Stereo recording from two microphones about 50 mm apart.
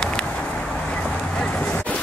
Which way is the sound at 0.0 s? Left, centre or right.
Centre.